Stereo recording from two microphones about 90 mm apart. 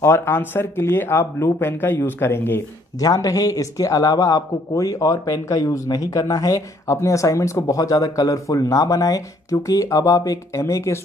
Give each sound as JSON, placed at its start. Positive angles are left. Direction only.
{"t": 0.0, "sound": "speech", "side_deg": 25}
{"t": 3.0, "sound": "a man's voice", "side_deg": 40}